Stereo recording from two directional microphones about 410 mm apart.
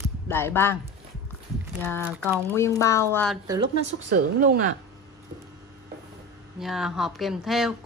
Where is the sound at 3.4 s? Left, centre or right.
Centre.